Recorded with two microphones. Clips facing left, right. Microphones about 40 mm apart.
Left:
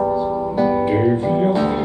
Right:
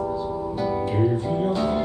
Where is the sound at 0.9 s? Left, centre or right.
Left.